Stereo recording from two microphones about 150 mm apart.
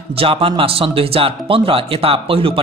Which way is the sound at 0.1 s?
40° right (ahead or behind).